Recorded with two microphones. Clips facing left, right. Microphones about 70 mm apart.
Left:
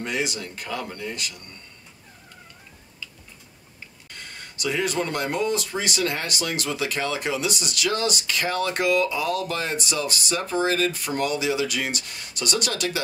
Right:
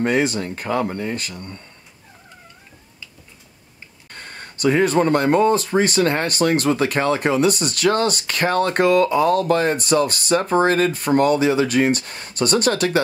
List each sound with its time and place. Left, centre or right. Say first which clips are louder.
0.0 s speech: right 9 dB; right
4.1 s speech: right 5 dB; right